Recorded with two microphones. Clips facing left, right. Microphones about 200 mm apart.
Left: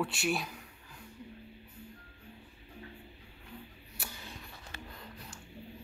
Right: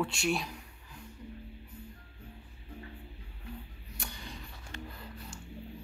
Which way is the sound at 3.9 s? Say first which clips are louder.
Right 2 dB; 5° left (ahead or behind).